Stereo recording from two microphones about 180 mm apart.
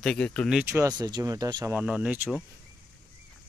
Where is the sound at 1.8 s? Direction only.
5° right (ahead or behind).